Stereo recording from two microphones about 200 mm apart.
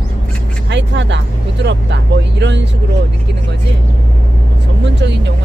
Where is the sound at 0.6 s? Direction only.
60° right (ahead or behind).